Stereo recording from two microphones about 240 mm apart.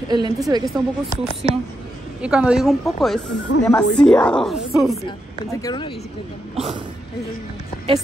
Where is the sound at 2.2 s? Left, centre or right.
Centre.